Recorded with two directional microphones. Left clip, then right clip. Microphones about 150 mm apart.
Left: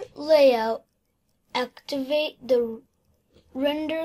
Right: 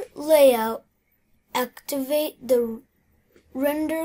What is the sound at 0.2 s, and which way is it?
A woman's voice, 25° right (ahead or behind).